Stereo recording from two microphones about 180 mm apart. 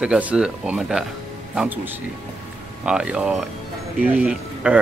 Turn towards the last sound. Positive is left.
turn(degrees=-10)  # may be behind; listen again after turning